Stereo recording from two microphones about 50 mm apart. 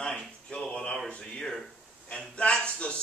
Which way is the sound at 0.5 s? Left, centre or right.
Centre.